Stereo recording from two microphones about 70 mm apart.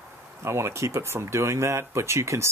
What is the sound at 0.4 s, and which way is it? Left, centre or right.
Speech, right.